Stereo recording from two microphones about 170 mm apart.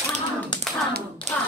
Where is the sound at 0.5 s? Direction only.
25° left (ahead or behind).